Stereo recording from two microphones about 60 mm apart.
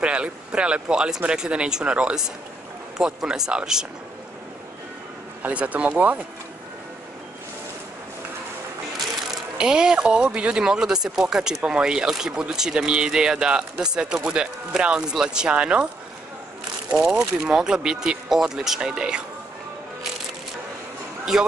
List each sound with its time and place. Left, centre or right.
0.0 s speech: centre
5.4 s speech: right
9.3 s speech: centre
17.4 s speech: centre
21.3 s speech: centre